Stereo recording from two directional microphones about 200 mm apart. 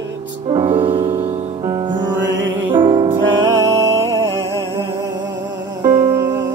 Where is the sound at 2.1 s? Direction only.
65° right (ahead or behind).